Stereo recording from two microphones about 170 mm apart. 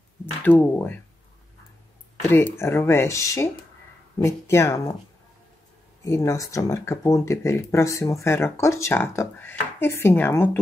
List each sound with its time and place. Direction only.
0.4 s speech: 10° left (ahead or behind)
2.2 s speech: 15° left (ahead or behind)
6.0 s speech: 20° left (ahead or behind)